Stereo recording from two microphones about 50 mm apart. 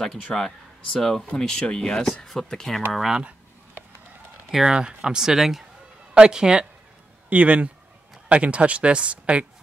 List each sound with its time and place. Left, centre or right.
0.0 s speech: centre
2.9 s speech: centre
4.5 s speech: centre
4.7 s speech: centre
6.1 s speech: centre